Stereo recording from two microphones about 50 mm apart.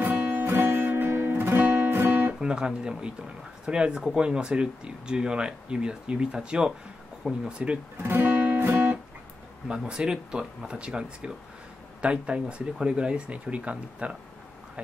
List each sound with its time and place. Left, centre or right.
0.0 s music: right
2.4 s speech: centre
8.0 s music: right
8.6 s guitar: right
9.7 s speech: centre